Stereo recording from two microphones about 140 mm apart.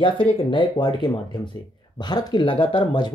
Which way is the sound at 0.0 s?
40° left (ahead or behind).